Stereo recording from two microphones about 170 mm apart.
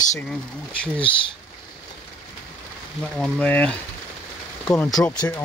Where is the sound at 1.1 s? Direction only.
30° left (ahead or behind).